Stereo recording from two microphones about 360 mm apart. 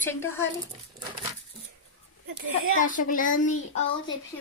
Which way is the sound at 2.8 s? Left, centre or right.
Left.